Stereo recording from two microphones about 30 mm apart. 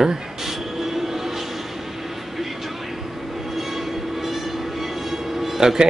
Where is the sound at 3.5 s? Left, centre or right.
Centre.